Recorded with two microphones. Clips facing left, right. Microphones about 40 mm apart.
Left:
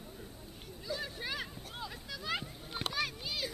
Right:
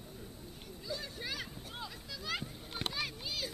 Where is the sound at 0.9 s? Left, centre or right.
Left.